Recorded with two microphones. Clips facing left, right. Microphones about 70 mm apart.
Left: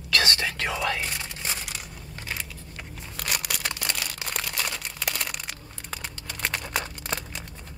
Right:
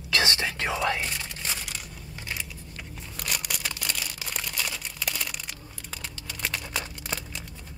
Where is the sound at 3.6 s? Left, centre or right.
Left.